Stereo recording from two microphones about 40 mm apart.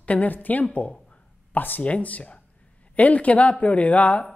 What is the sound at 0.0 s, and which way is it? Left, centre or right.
Speech, left.